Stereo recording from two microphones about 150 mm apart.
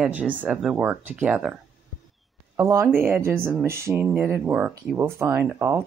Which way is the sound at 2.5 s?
20° right (ahead or behind).